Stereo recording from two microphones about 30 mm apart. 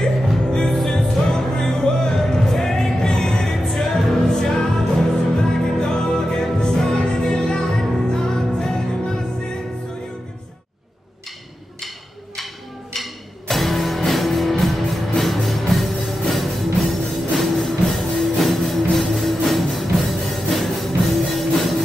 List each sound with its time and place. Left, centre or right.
0.5 s music: left
5.8 s music: left
12.9 s music: centre